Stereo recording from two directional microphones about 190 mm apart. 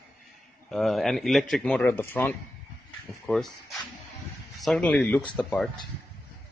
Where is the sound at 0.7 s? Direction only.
Centre (ahead or behind).